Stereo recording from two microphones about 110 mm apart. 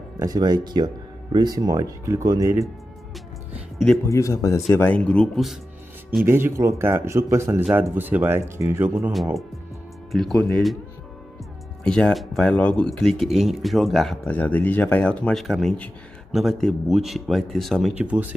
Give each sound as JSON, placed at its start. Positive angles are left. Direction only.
{"t": 0.2, "sound": "speech", "side_deg": -35}
{"t": 3.7, "sound": "speech", "side_deg": 5}
{"t": 4.1, "sound": "speech", "side_deg": 30}
{"t": 4.8, "sound": "speech", "side_deg": 10}
{"t": 6.2, "sound": "speech", "side_deg": -20}
{"t": 9.1, "sound": "speech", "side_deg": 0}
{"t": 11.8, "sound": "speech", "side_deg": 5}
{"t": 14.2, "sound": "speech", "side_deg": 15}
{"t": 15.4, "sound": "speech", "side_deg": 0}
{"t": 17.9, "sound": "speech", "side_deg": -10}